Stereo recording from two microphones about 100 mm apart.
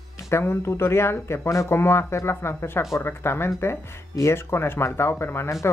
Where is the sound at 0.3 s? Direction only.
25° left (ahead or behind).